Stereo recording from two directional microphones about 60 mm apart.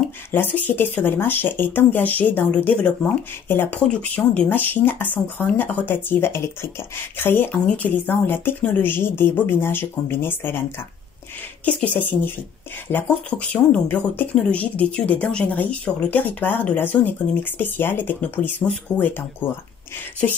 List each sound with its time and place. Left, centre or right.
0.3 s speech: left
3.4 s speech: left
4.1 s speech: left
7.6 s a woman's voice: centre
7.9 s speech: left
11.6 s a woman's voice: left
13.3 s a woman's voice: left
16.2 s speech: left